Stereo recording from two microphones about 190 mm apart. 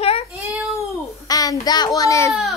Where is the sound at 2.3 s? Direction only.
Centre (ahead or behind).